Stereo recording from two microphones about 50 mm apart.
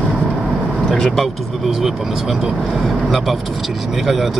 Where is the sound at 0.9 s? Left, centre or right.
Centre.